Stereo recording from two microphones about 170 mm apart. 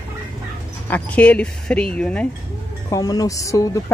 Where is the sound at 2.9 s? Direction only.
20° left (ahead or behind).